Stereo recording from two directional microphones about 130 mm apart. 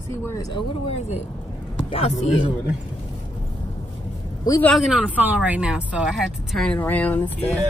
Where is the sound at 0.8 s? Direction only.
55° left (ahead or behind).